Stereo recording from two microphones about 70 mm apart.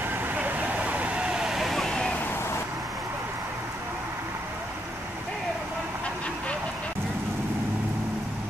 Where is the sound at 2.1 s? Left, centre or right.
Left.